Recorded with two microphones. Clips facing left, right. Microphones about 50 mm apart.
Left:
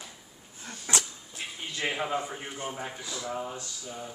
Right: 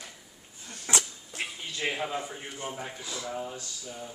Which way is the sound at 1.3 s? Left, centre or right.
Right.